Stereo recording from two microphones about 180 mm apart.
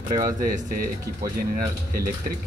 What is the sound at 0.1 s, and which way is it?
Speech, 50° right (ahead or behind).